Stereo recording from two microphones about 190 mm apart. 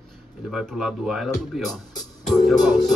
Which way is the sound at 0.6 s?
5° right (ahead or behind).